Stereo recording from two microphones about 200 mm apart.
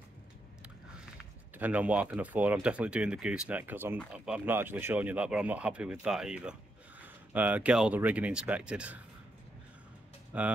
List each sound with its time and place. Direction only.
1.6 s speech: 5° right (ahead or behind)
10.3 s speech: 10° right (ahead or behind)